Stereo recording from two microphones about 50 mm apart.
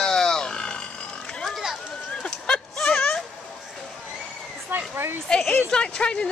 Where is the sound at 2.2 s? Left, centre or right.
Left.